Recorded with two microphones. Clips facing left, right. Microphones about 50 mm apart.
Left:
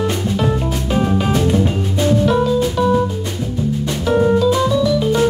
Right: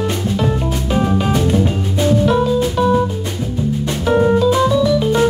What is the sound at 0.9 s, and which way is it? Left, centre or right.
Music, centre.